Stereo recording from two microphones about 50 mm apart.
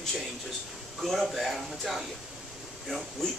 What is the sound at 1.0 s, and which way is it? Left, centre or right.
Speech, centre.